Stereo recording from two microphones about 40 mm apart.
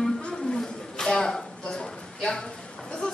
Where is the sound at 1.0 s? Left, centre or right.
Centre.